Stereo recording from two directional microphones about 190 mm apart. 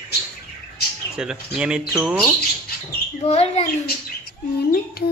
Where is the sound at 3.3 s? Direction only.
35° left (ahead or behind).